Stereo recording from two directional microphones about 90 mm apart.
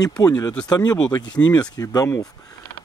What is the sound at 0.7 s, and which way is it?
Speech, 50° left (ahead or behind).